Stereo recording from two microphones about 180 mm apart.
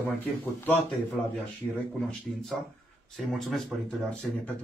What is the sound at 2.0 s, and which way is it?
Speech, 5° left (ahead or behind).